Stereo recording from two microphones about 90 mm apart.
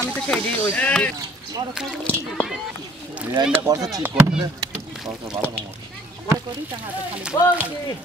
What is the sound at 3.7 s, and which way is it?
Speech, 40° right (ahead or behind).